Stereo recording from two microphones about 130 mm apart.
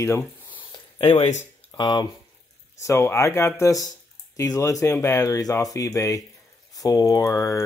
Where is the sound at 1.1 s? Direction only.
60° left (ahead or behind).